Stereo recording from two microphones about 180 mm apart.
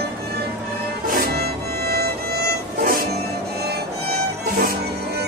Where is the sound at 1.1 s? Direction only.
60° right (ahead or behind).